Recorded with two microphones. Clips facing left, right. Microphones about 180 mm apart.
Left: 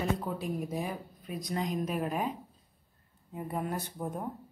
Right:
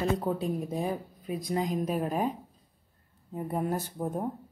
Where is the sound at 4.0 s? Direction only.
20° right (ahead or behind).